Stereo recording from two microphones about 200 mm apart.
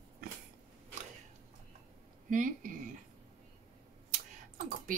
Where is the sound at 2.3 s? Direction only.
40° right (ahead or behind).